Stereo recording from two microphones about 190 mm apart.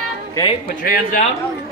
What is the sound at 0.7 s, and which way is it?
Speech, 45° left (ahead or behind).